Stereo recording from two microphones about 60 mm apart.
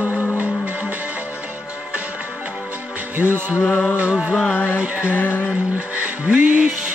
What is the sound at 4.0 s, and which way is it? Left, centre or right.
Music, centre.